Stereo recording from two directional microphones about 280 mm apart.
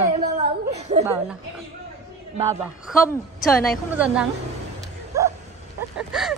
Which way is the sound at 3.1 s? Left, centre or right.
Centre.